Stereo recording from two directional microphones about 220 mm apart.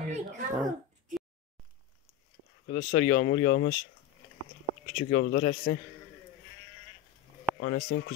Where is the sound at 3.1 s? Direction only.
55° left (ahead or behind).